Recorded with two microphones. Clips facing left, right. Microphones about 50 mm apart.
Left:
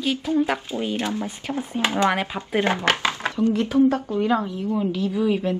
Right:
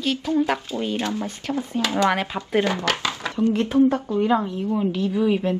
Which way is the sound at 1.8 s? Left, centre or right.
Left.